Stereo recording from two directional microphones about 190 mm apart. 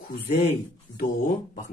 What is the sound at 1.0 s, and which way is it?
Speech, 45° left (ahead or behind).